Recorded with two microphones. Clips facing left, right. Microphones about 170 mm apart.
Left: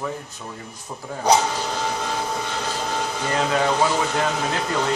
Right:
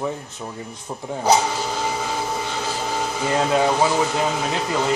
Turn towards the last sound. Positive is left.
turn(degrees=-5)  # may be behind; listen again after turning